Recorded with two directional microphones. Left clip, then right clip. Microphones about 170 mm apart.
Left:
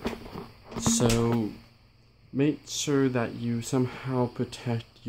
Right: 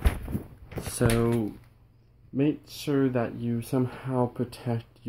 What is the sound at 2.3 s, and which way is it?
Speech, centre (ahead or behind).